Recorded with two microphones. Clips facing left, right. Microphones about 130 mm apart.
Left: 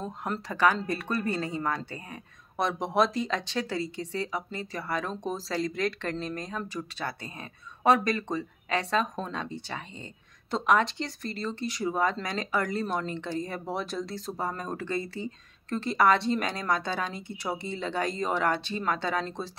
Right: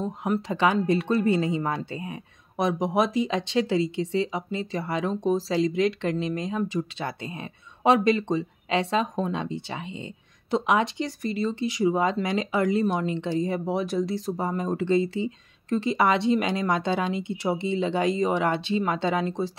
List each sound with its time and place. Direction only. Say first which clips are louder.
0.0 s speech: right 7 dB; 15° right (ahead or behind)